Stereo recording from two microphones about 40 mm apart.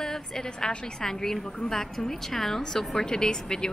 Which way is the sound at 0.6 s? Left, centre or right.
Centre.